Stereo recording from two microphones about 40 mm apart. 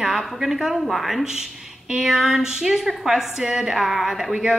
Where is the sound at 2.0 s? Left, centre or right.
Centre.